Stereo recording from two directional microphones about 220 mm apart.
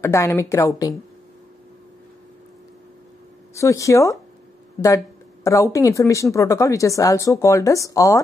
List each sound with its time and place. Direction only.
0.0 s speech: 10° left (ahead or behind)
3.5 s speech: 15° left (ahead or behind)